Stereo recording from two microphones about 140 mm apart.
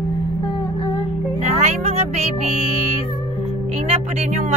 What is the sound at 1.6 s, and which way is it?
Music, 50° right (ahead or behind).